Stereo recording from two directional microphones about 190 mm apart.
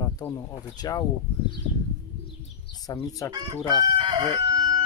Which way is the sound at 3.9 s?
25° right (ahead or behind).